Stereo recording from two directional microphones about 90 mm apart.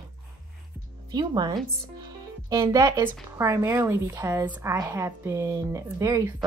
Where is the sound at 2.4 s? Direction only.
40° right (ahead or behind).